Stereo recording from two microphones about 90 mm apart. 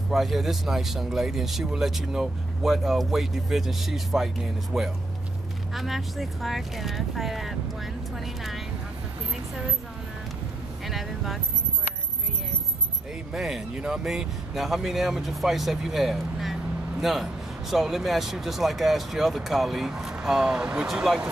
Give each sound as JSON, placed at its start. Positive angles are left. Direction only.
{"t": 0.1, "sound": "speech", "side_deg": 0}
{"t": 10.9, "sound": "speech", "side_deg": 0}
{"t": 13.3, "sound": "speech", "side_deg": -5}